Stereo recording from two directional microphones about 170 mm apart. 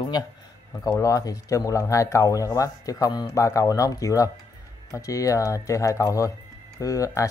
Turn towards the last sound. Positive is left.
turn(degrees=20)  # may be behind; listen again after turning